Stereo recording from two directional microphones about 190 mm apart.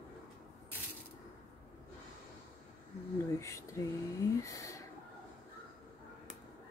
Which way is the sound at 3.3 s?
15° left (ahead or behind).